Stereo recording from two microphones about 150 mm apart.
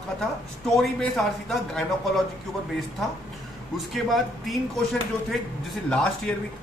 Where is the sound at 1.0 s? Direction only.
5° left (ahead or behind).